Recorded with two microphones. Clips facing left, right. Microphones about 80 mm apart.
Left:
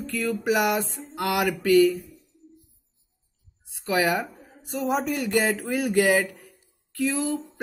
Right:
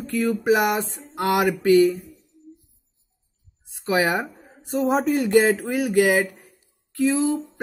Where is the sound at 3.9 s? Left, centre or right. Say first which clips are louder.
Right 2 dB; right.